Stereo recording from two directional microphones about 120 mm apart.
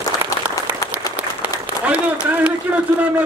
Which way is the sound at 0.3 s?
30° left (ahead or behind).